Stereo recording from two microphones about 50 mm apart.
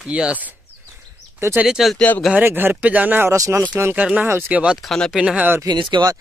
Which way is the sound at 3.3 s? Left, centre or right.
Right.